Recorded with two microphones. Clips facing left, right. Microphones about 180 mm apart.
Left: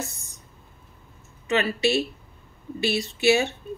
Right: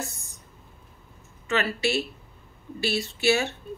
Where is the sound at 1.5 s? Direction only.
20° left (ahead or behind).